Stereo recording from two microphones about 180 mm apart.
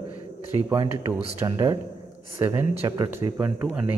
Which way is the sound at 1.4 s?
20° right (ahead or behind).